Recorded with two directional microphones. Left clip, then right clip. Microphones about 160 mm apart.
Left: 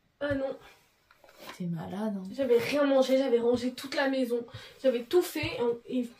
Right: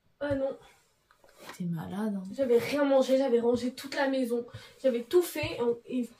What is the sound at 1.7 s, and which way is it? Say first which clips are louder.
Speech: left 1 dB; 60° right (ahead or behind).